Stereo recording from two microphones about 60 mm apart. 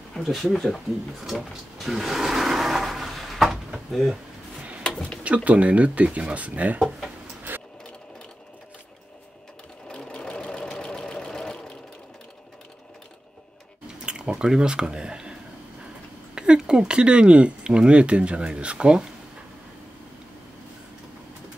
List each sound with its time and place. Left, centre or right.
0.1 s speech: centre
1.2 s a sound: centre
4.8 s a sound: centre
5.2 s speech: right
7.5 s sewing machine: right
9.8 s sewing machine: centre
14.0 s speech: centre
16.3 s speech: centre